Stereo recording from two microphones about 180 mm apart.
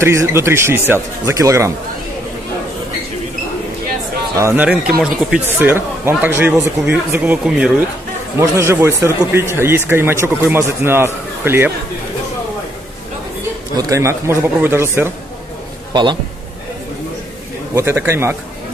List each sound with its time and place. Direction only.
0.0 s speech: 15° right (ahead or behind)
4.4 s speech: 10° right (ahead or behind)
13.7 s speech: 15° right (ahead or behind)
15.9 s a man's voice: 25° right (ahead or behind)
17.7 s speech: 15° right (ahead or behind)